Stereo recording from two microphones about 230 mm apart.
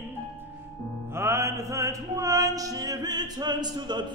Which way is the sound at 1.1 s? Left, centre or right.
Centre.